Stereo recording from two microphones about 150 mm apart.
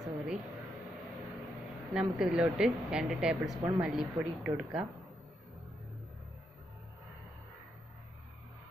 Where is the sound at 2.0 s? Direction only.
5° right (ahead or behind).